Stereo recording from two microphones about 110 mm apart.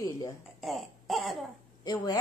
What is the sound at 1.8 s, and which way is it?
Speech, 40° left (ahead or behind).